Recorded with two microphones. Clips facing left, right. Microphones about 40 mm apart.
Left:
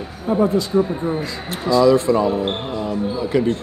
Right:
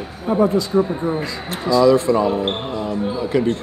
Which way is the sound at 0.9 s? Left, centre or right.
Centre.